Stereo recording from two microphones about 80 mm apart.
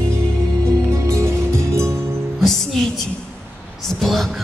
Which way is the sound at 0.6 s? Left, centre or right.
Right.